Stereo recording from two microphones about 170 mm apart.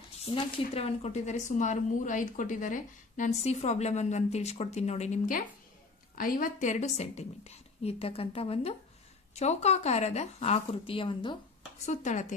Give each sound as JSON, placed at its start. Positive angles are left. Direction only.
{"t": 0.2, "sound": "a woman's voice", "side_deg": 35}
{"t": 11.8, "sound": "a woman's voice", "side_deg": 45}